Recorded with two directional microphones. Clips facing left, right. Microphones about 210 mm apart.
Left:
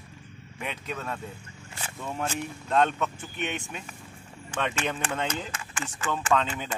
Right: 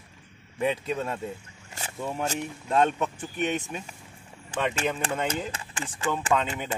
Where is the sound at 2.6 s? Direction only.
10° right (ahead or behind).